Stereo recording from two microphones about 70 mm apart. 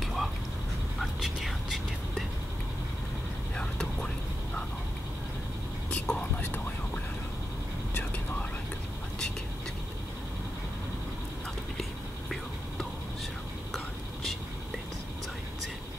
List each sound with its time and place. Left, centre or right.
0.0 s a sound: centre
0.9 s whispering: centre
3.5 s whispering: centre
6.0 s whispering: centre